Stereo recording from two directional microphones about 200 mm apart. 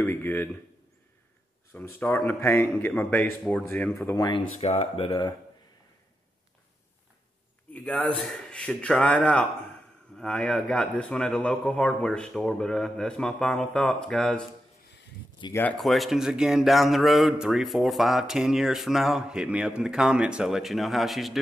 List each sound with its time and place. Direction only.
0.0 s speech: 10° left (ahead or behind)
2.0 s a man's voice: 10° left (ahead or behind)
4.3 s speech: 30° left (ahead or behind)
7.7 s a man's voice: 5° left (ahead or behind)
15.5 s a man's voice: 5° left (ahead or behind)